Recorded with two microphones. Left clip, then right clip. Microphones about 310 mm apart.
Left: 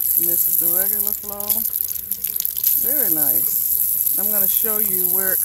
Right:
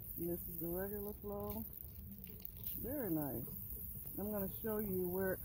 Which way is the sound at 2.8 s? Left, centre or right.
Left.